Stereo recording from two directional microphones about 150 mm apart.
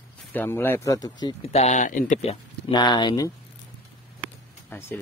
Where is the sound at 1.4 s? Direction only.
45° left (ahead or behind).